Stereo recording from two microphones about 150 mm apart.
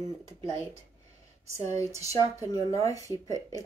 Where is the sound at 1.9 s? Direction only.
20° right (ahead or behind).